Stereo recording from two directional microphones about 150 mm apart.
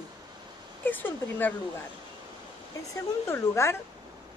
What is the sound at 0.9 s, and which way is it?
Speech, 10° left (ahead or behind).